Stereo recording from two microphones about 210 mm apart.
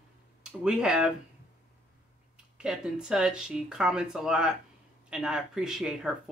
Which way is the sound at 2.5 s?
5° right (ahead or behind).